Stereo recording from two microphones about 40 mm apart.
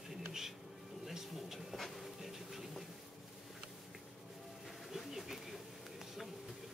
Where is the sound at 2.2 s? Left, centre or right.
Centre.